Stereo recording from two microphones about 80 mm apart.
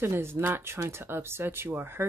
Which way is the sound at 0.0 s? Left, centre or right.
Right.